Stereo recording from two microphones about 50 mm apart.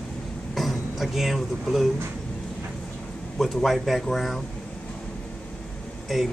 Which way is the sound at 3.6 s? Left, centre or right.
Centre.